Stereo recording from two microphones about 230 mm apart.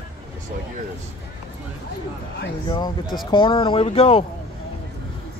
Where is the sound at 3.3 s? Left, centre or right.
Left.